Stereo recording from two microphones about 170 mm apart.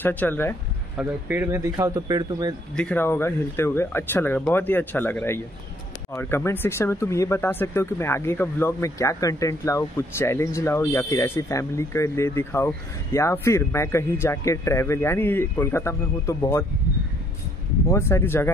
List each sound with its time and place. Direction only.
0.0 s speech: 10° left (ahead or behind)
0.9 s speech: 10° right (ahead or behind)
2.7 s speech: 5° left (ahead or behind)
17.8 s speech: 15° left (ahead or behind)